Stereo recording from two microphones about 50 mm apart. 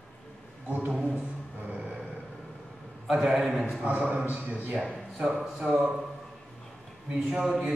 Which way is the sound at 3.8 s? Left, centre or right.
Right.